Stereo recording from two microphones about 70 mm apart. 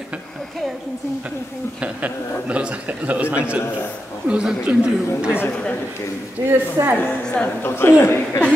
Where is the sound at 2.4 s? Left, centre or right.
Centre.